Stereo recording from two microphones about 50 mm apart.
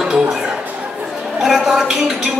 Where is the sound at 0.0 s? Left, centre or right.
Centre.